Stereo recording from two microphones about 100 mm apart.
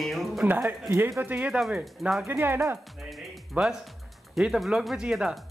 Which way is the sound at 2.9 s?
Centre (ahead or behind).